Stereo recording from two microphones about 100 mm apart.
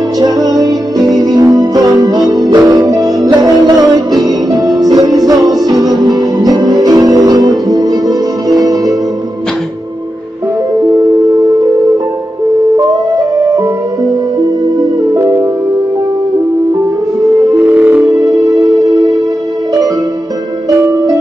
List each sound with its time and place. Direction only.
0.5 s music: 35° right (ahead or behind)
5.8 s music: centre (ahead or behind)
6.0 s music: 40° right (ahead or behind)
10.9 s music: 40° right (ahead or behind)
12.7 s music: 35° right (ahead or behind)
14.8 s music: 35° right (ahead or behind)
17.7 s music: 15° right (ahead or behind)
18.0 s music: 40° right (ahead or behind)